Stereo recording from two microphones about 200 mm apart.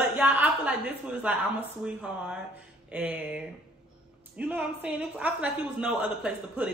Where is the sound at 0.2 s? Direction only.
10° right (ahead or behind).